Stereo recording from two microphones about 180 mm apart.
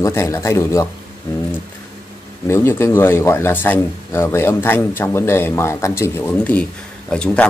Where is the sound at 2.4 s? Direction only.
15° left (ahead or behind).